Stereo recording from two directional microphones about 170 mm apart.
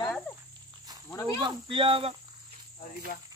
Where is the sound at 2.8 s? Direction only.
60° left (ahead or behind).